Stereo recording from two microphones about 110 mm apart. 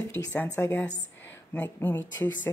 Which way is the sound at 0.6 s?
20° left (ahead or behind).